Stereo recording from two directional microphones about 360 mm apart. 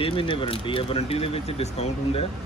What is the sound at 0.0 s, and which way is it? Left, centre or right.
Speech, centre.